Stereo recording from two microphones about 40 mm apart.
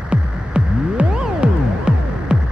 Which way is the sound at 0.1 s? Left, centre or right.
Right.